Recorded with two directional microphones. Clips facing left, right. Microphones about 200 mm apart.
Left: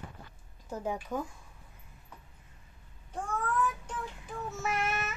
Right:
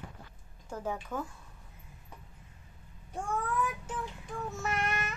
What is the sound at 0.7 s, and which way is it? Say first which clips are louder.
Speech: left 2 dB; 15° left (ahead or behind).